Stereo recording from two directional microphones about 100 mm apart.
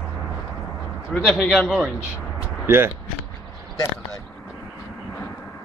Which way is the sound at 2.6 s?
25° right (ahead or behind).